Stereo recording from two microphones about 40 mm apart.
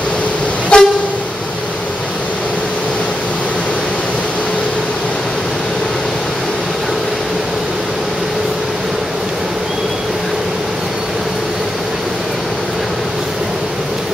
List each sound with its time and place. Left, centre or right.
0.7 s vehicle: left